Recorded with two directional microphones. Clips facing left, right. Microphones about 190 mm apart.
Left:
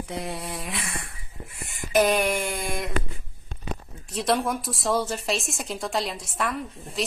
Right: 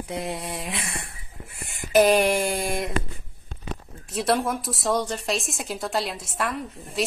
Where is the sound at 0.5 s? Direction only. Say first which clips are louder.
Right 1 dB; 25° right (ahead or behind).